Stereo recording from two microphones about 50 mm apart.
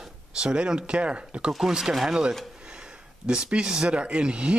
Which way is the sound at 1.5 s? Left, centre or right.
Centre.